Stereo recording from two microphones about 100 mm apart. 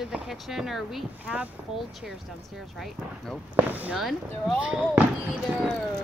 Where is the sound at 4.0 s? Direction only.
Centre (ahead or behind).